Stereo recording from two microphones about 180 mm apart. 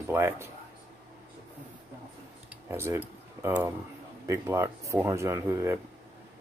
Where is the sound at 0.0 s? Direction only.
15° right (ahead or behind).